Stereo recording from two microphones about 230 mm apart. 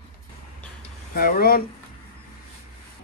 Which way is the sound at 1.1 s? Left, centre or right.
Left.